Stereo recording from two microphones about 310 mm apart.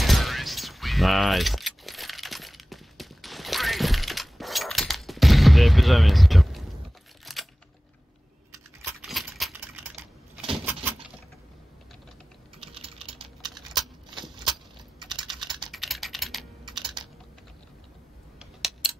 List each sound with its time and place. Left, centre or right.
0.0 s keys jangling: centre
7.3 s a sound: centre
9.0 s keys jangling: centre
12.7 s typing: centre
15.0 s typing: centre
15.6 s typing: centre
16.8 s typing: centre
18.4 s a sound: centre